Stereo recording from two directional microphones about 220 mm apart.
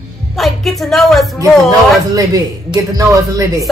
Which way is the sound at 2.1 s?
15° right (ahead or behind).